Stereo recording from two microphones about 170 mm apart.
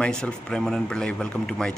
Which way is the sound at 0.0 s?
5° left (ahead or behind).